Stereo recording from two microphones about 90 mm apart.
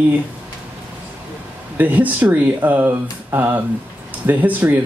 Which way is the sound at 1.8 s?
20° right (ahead or behind).